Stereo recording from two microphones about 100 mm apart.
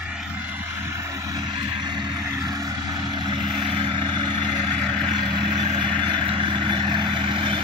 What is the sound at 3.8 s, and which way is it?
Vehicle, 50° right (ahead or behind).